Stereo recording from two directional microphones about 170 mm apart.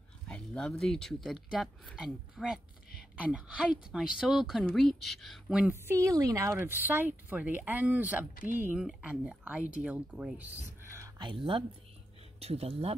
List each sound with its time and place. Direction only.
0.3 s speech: 5° left (ahead or behind)
5.7 s speech: 15° right (ahead or behind)
11.1 s speech: 30° right (ahead or behind)